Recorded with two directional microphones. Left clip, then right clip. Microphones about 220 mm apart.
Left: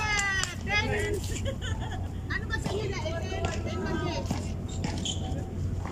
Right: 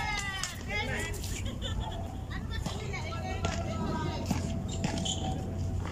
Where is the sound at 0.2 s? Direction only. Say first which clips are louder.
Left 7 dB; 45° left (ahead or behind).